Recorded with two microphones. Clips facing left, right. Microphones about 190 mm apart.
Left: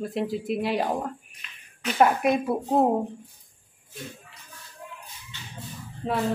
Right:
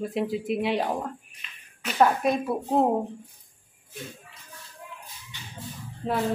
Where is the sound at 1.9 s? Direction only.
10° left (ahead or behind).